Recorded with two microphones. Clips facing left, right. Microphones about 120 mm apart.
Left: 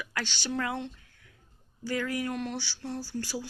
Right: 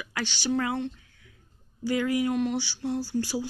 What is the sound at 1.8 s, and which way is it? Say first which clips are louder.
Speech: right 6 dB; 10° right (ahead or behind).